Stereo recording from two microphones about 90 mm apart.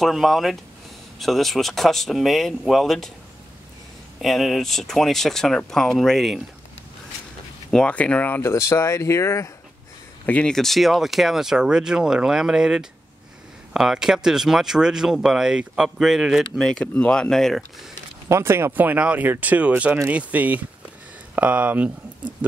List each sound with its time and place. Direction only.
0.0 s speech: centre (ahead or behind)
4.2 s speech: centre (ahead or behind)
7.7 s speech: 15° left (ahead or behind)
8.4 s speech: 30° left (ahead or behind)
10.2 s speech: 15° left (ahead or behind)
10.5 s speech: 5° left (ahead or behind)
16.5 s speech: 5° left (ahead or behind)
18.3 s speech: 30° right (ahead or behind)